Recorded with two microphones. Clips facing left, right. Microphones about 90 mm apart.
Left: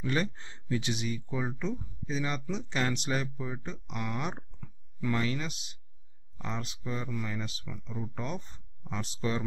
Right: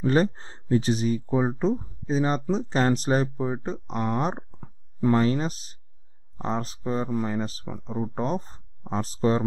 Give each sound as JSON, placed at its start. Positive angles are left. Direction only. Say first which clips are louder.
{"t": 0.0, "sound": "speech", "louder": "right 9 dB", "side_deg": -40}